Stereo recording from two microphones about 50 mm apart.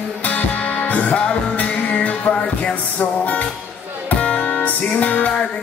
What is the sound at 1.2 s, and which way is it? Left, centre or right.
Music, left.